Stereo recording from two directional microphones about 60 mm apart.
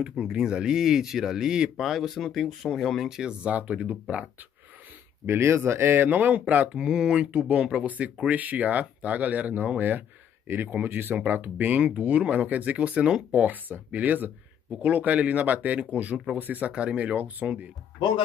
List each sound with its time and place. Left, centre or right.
0.2 s speech: centre
5.2 s speech: right
6.8 s speech: centre